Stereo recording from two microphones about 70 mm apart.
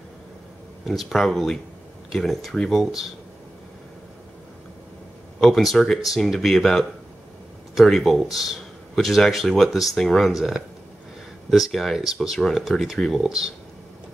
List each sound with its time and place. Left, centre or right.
0.8 s speech: centre
5.4 s speech: centre